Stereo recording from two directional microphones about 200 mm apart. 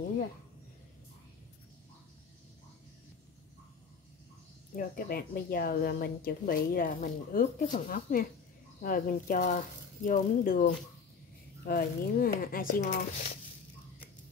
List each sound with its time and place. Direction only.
4.7 s a woman's voice: 45° left (ahead or behind)